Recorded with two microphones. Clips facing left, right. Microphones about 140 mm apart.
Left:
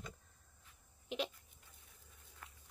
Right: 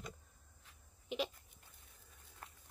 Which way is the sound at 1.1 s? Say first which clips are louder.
Right 1 dB; centre (ahead or behind).